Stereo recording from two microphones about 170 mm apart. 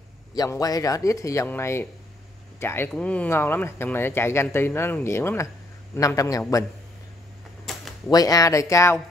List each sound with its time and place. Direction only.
0.3 s speech: 20° left (ahead or behind)
7.7 s a sound: centre (ahead or behind)
8.1 s speech: 20° left (ahead or behind)